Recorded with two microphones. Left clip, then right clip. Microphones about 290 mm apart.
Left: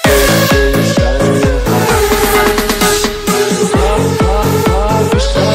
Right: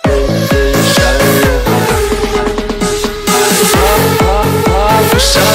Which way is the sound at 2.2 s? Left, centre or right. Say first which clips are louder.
Left 3 dB; left.